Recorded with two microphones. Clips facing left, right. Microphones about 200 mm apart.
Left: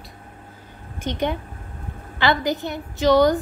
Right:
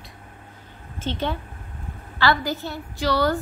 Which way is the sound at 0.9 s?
15° left (ahead or behind).